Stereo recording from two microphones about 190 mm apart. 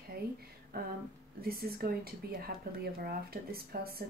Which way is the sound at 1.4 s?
55° right (ahead or behind).